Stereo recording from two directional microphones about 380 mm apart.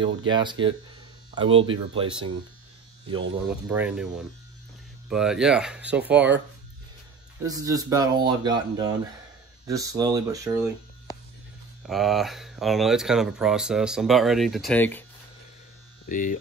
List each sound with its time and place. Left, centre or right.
0.3 s speech: centre
3.6 s speech: centre
5.1 s speech: centre
7.4 s speech: centre
11.8 s speech: centre
16.1 s speech: left